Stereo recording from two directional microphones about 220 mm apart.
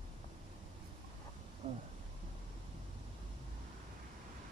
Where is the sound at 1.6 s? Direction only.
25° right (ahead or behind).